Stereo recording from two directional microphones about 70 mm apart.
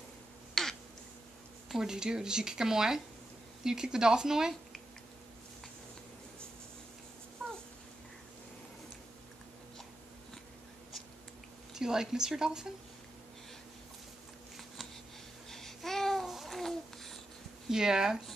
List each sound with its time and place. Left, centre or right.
0.6 s finger snapping: centre
1.7 s speech: centre
11.7 s speech: centre
15.5 s babbling: centre
17.6 s speech: centre